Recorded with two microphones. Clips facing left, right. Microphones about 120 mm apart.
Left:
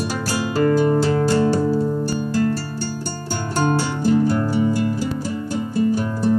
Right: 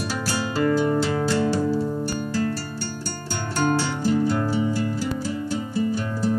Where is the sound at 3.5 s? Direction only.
45° left (ahead or behind).